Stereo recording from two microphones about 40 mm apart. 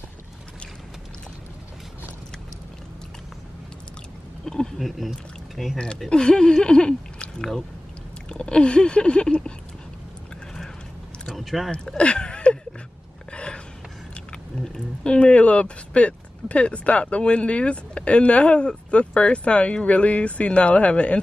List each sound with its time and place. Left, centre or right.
4.5 s speech: centre
4.7 s speech: centre
6.0 s speech: centre
8.3 s speech: left
11.2 s a sound: centre
12.0 s a sound: left
15.0 s speech: left